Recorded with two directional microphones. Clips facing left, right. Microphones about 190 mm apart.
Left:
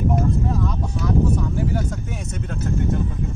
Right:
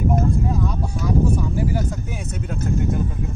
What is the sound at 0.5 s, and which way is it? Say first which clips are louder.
Vehicle: even; 10° right (ahead or behind).